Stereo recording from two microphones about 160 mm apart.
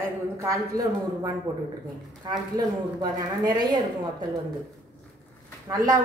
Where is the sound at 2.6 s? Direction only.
25° right (ahead or behind).